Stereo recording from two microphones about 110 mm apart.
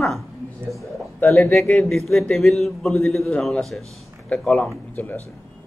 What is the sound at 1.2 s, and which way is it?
Speech, 25° left (ahead or behind).